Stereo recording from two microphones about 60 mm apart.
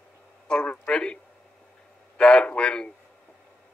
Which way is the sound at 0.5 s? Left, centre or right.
Centre.